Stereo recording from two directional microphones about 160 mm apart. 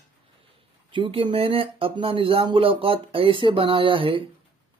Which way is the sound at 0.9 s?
30° right (ahead or behind).